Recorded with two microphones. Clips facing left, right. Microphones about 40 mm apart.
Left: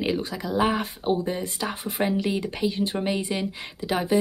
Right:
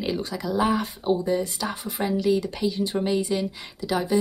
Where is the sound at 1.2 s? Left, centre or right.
Left.